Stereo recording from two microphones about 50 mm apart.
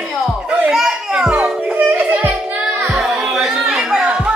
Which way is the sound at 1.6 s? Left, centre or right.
Right.